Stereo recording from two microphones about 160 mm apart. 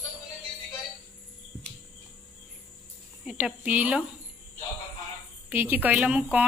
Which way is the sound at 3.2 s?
10° right (ahead or behind).